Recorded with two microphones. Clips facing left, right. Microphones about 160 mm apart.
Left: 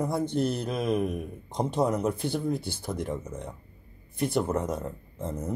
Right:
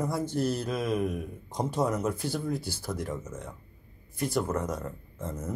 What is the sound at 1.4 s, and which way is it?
Speech, 25° left (ahead or behind).